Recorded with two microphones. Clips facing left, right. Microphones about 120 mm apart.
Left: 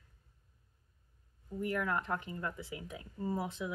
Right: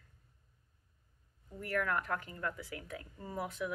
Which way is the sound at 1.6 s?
20° left (ahead or behind).